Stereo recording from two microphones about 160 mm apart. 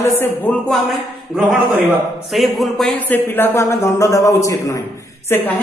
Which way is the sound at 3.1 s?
15° left (ahead or behind).